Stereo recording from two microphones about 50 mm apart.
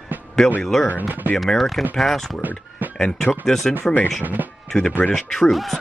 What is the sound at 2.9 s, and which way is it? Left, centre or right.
Speech, centre.